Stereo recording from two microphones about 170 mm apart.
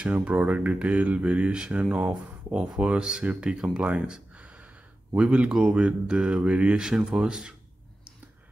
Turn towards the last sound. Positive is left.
turn(degrees=-5)  # may be behind; listen again after turning